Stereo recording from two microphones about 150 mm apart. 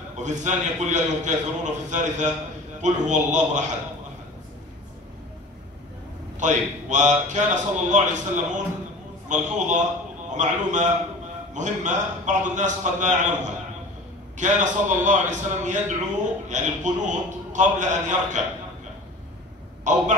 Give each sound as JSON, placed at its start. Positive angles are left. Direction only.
{"t": 0.2, "sound": "a man's voice", "side_deg": -55}
{"t": 6.4, "sound": "a man's voice", "side_deg": -55}
{"t": 19.8, "sound": "speech", "side_deg": -55}